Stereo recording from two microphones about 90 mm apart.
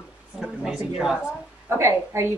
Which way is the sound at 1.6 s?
30° right (ahead or behind).